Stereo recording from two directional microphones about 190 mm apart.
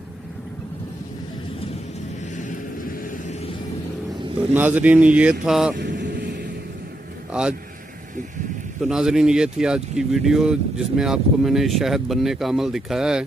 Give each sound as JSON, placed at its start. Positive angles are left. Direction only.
{"t": 4.6, "sound": "speech", "side_deg": -10}
{"t": 5.8, "sound": "vehicle", "side_deg": -65}
{"t": 8.8, "sound": "speech", "side_deg": -5}